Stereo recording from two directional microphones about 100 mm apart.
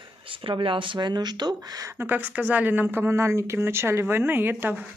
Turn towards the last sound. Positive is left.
turn(degrees=-20)  # may be behind; listen again after turning